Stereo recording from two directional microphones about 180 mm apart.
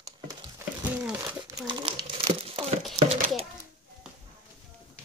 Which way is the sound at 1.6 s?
30° right (ahead or behind).